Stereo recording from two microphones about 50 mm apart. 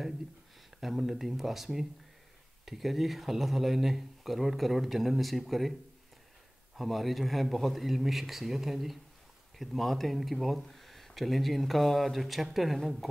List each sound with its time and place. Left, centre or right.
0.7 s speech: centre
6.8 s speech: centre